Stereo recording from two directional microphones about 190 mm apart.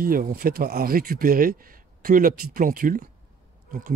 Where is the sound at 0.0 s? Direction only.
50° right (ahead or behind).